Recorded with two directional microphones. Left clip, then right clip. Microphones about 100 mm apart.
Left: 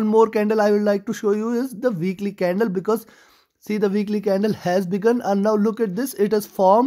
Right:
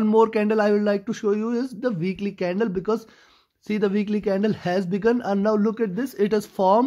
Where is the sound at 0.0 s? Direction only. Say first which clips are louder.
Left 2 dB; 30° left (ahead or behind).